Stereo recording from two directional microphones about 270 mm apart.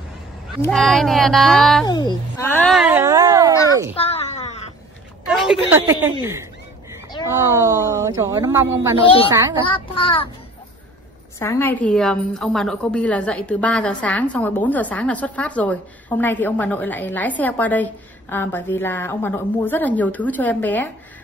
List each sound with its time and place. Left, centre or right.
0.6 s a woman's voice: centre
1.9 s speech: centre
3.9 s a sound: left
5.2 s a sound: centre
5.9 s speech: centre
9.7 s a child's voice: centre
11.3 s a woman's voice: centre